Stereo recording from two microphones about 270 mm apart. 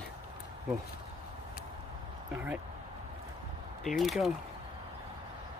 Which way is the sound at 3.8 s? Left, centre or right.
Centre.